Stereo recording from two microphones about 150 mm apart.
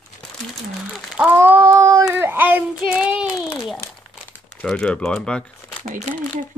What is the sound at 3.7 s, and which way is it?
Crumpling, 10° left (ahead or behind).